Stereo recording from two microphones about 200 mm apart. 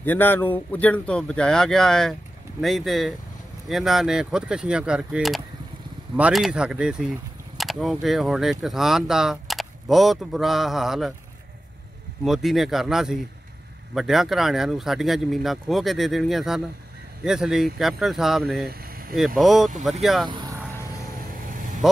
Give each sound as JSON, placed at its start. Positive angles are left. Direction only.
{"t": 0.0, "sound": "speech", "side_deg": 10}
{"t": 12.3, "sound": "speech", "side_deg": 0}
{"t": 20.2, "sound": "vehicle", "side_deg": -20}